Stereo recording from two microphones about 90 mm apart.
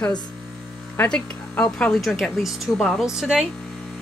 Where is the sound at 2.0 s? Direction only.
Centre (ahead or behind).